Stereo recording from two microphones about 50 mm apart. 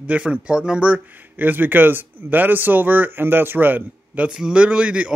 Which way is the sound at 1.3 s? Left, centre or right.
Right.